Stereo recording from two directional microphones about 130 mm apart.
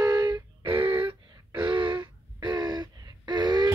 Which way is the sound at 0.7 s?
40° right (ahead or behind).